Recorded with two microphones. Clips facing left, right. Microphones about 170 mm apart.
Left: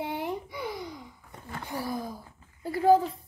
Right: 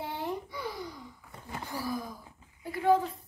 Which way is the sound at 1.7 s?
25° left (ahead or behind).